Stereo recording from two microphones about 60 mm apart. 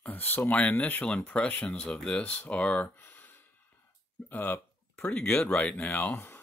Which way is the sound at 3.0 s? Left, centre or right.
Left.